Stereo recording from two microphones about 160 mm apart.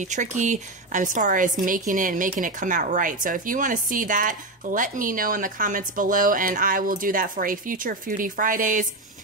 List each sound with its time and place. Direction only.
0.0 s speech: 50° right (ahead or behind)